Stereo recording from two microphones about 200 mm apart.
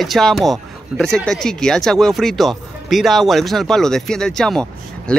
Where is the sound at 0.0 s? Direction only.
Centre (ahead or behind).